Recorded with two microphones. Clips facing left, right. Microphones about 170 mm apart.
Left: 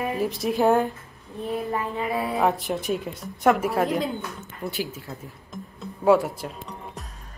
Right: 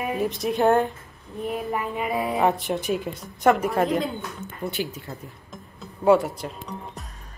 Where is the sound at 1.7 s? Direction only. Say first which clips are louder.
Even; 15° right (ahead or behind).